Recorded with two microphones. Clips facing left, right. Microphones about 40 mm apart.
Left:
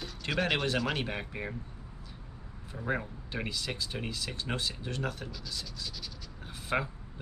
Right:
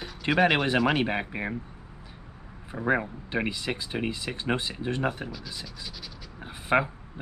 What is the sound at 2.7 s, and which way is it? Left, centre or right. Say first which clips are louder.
Speech: right 8 dB; right.